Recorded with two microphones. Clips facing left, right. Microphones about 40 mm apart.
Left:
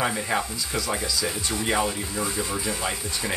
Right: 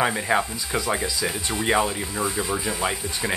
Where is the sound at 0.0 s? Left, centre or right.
Centre.